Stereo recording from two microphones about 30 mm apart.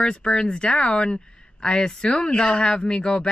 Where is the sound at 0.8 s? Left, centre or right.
Left.